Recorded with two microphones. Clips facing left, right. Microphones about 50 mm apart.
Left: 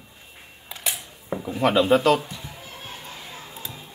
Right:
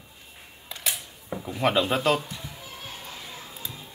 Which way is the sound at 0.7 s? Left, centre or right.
Centre.